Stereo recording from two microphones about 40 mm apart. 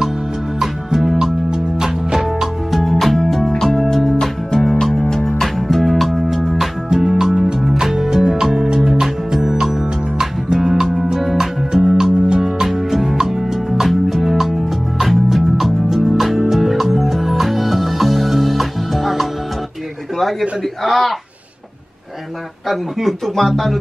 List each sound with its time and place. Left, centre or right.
0.6 s music: centre
5.4 s music: centre
11.3 s music: centre
20.2 s a sound: centre
22.7 s speech: centre